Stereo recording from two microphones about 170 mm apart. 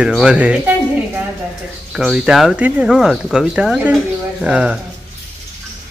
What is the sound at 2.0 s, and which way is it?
Speech, centre (ahead or behind).